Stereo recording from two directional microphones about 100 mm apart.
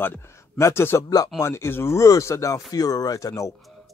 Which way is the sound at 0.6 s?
30° left (ahead or behind).